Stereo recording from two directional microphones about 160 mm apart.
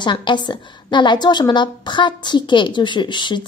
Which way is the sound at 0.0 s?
30° left (ahead or behind).